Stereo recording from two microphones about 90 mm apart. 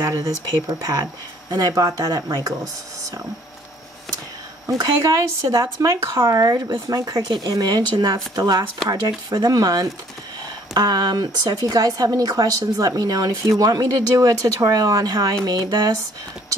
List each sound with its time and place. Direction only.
0.7 s speech: 45° right (ahead or behind)
4.7 s speech: 40° right (ahead or behind)